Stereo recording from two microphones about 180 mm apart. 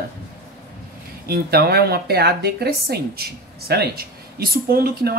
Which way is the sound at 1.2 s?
60° right (ahead or behind).